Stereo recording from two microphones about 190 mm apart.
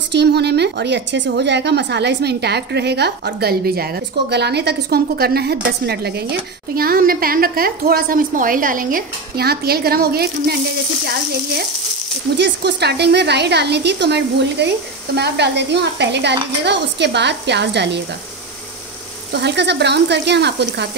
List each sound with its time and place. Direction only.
0.1 s a woman's voice: 60° right (ahead or behind)
12.4 s a woman's voice: 65° right (ahead or behind)
19.3 s a woman's voice: 65° right (ahead or behind)